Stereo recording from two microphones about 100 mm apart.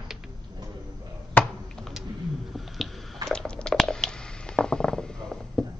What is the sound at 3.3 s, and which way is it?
Squish, 10° left (ahead or behind).